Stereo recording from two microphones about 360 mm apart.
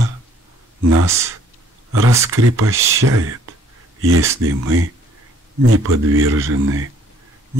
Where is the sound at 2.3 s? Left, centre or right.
Right.